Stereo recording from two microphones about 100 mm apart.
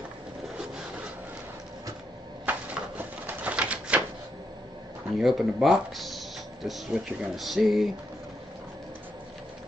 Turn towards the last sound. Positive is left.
turn(degrees=0)  # may be behind; listen again after turning